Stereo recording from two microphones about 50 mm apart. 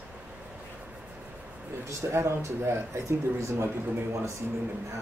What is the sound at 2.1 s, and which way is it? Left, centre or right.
Speech, right.